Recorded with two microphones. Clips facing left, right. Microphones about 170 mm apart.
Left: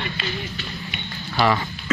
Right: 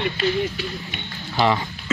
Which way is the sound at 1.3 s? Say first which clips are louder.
Even; 20° right (ahead or behind).